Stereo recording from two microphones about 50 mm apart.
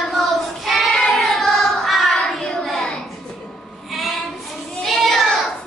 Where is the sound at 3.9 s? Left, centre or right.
Centre.